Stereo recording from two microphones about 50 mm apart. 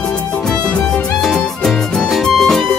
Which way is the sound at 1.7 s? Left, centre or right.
Centre.